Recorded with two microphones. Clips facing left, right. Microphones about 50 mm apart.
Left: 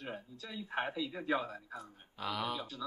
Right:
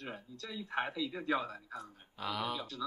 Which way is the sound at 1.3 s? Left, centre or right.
Left.